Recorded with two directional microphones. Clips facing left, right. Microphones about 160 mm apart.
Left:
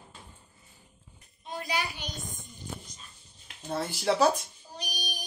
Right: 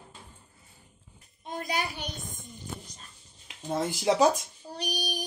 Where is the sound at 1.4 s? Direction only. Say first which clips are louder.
Right 2 dB; 50° right (ahead or behind).